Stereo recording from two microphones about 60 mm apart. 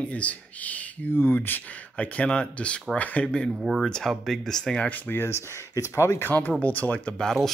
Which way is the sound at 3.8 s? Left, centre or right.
Centre.